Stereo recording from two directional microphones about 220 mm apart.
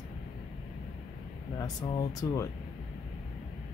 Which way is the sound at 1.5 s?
15° left (ahead or behind).